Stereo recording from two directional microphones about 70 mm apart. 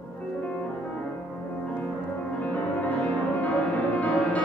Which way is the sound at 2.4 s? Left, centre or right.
Left.